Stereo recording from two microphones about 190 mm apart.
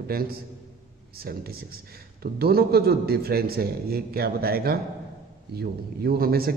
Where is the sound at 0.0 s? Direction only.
55° right (ahead or behind).